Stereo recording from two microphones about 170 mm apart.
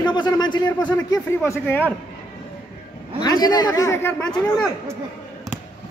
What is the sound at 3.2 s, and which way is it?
A man's voice, 25° left (ahead or behind).